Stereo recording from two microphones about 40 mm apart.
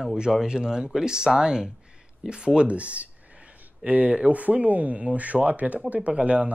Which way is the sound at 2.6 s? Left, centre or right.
Right.